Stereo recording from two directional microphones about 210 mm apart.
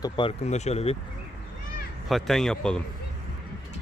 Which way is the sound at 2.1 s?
Centre (ahead or behind).